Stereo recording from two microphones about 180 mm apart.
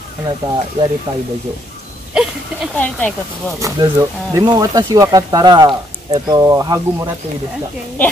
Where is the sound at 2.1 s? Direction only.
5° right (ahead or behind).